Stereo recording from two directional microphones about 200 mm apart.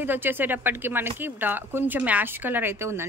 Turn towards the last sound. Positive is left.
turn(degrees=-10)  # may be behind; listen again after turning